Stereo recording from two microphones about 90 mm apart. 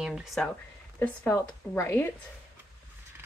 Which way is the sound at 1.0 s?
25° left (ahead or behind).